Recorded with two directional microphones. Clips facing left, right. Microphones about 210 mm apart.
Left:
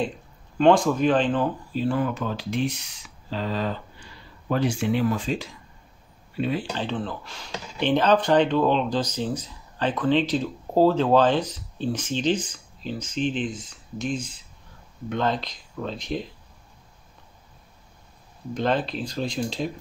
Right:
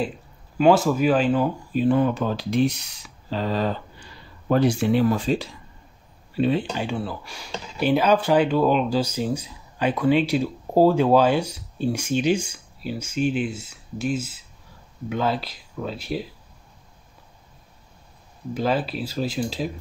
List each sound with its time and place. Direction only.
0.6 s speech: 5° right (ahead or behind); by 6.6 s 30° right (ahead or behind)
6.7 s speech: 10° right (ahead or behind)
18.5 s speech: 5° right (ahead or behind)